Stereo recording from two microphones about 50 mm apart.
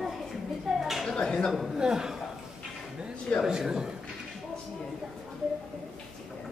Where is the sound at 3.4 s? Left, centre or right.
Centre.